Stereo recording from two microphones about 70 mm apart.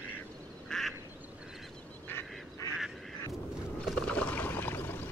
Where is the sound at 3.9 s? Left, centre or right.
Centre.